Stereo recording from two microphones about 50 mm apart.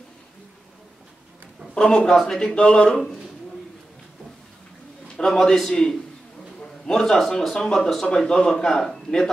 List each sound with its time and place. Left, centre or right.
1.8 s speech: centre
5.0 s a man's voice: centre